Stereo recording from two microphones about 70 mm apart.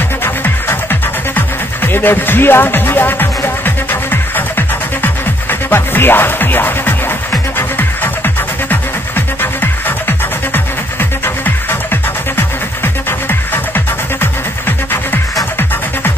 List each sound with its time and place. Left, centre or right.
0.2 s music: left